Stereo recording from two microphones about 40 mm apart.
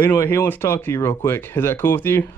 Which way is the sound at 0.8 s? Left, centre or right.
Left.